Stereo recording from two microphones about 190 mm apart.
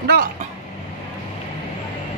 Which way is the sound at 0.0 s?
55° right (ahead or behind).